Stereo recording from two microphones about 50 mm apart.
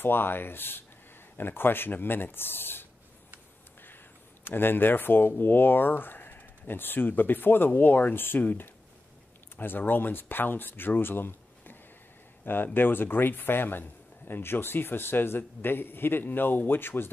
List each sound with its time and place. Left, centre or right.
0.0 s a man's voice: left
4.5 s a man's voice: left
12.7 s a man's voice: left